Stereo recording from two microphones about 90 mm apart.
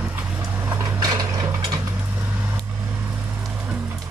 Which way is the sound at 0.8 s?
45° right (ahead or behind).